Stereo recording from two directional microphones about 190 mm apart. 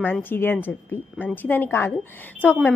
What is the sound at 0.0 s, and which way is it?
A woman's voice, 10° left (ahead or behind).